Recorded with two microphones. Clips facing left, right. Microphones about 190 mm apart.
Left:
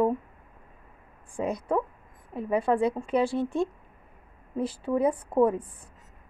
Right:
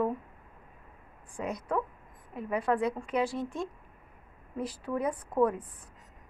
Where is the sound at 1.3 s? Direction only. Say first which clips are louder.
Left 5 dB; 30° left (ahead or behind).